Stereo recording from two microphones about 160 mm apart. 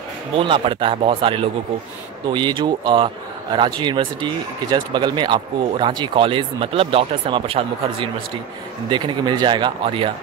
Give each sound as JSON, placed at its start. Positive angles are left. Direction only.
{"t": 0.4, "sound": "speech", "side_deg": -35}